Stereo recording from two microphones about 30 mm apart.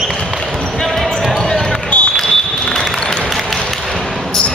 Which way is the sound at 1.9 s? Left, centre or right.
Left.